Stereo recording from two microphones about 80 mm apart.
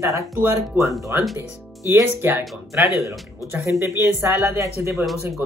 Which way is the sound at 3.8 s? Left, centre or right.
Right.